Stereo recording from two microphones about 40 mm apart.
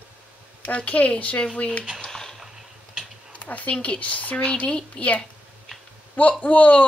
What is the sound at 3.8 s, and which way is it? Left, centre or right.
Speech, left.